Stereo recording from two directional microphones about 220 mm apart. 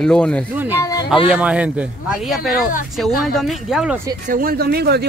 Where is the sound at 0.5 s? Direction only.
10° right (ahead or behind).